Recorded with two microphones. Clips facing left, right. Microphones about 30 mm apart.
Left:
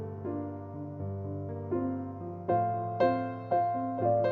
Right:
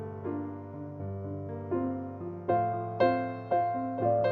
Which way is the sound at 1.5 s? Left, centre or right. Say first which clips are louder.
Right 1 dB; right.